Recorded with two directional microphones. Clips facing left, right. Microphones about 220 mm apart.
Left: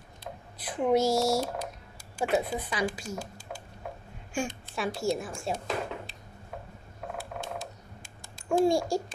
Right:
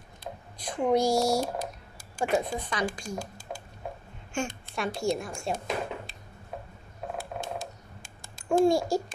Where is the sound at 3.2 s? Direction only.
45° right (ahead or behind).